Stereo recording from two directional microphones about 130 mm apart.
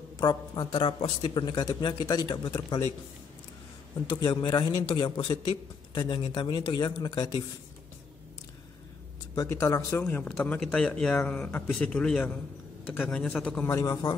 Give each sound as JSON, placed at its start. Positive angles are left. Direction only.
{"t": 0.2, "sound": "a woman's voice", "side_deg": 35}
{"t": 1.3, "sound": "speech", "side_deg": 30}
{"t": 4.1, "sound": "speech", "side_deg": 35}
{"t": 9.3, "sound": "speech", "side_deg": 25}
{"t": 10.2, "sound": "speech", "side_deg": 5}
{"t": 13.7, "sound": "speech", "side_deg": 25}